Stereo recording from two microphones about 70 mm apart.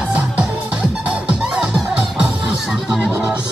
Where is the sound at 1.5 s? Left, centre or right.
Centre.